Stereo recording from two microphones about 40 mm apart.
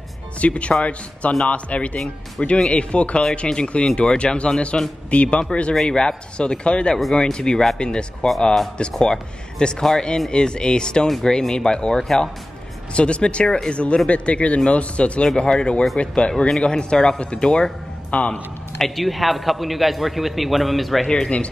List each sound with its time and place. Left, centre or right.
0.4 s speech: left
18.1 s speech: left
18.8 s speech: centre
21.1 s speech: left